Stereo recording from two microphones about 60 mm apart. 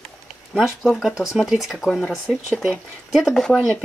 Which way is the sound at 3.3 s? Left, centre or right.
Centre.